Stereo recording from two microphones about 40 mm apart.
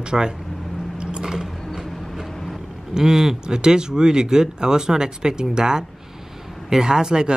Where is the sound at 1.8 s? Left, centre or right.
Centre.